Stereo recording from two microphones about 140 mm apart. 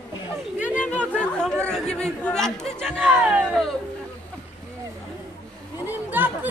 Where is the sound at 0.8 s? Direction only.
10° left (ahead or behind).